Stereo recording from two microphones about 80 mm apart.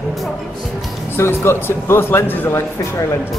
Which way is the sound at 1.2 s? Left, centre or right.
Left.